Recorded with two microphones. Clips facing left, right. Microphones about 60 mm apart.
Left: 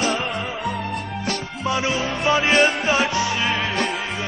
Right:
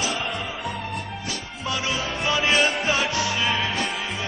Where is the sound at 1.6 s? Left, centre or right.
Left.